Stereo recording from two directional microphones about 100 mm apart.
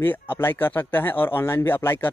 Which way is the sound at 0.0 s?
20° left (ahead or behind).